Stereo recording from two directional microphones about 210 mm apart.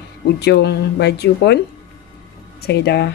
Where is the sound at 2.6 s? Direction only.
50° left (ahead or behind).